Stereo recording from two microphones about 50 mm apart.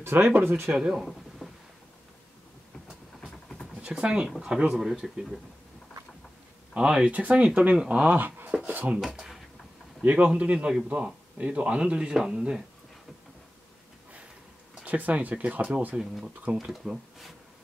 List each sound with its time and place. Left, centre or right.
0.0 s speech: right
0.7 s speech: centre
1.4 s a sound: centre
3.8 s speech: right
6.7 s speech: centre
7.1 s speech: right
8.6 s speech: right
10.0 s speech: right
14.9 s speech: right
16.5 s speech: right
16.8 s speech: centre